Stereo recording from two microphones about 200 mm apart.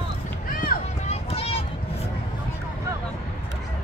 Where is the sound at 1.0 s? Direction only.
30° left (ahead or behind).